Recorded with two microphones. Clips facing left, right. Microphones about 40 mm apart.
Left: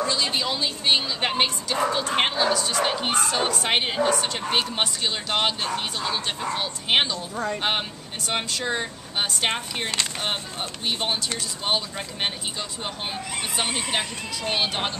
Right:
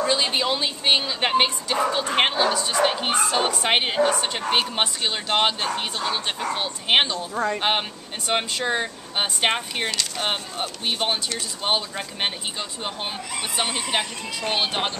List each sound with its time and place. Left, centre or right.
0.0 s a woman's voice: right
10.9 s a woman's voice: centre
14.5 s a woman's voice: centre